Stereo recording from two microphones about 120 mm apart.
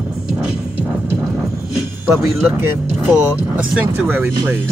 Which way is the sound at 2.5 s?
15° right (ahead or behind).